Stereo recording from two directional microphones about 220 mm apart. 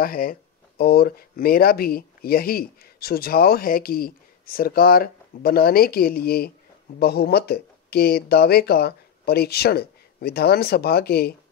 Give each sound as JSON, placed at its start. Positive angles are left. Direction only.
{"t": 0.0, "sound": "speech", "side_deg": 40}